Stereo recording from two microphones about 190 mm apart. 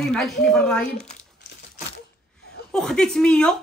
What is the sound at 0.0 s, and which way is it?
Speech, 5° left (ahead or behind).